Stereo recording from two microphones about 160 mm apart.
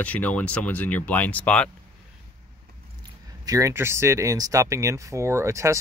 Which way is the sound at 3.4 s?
20° right (ahead or behind).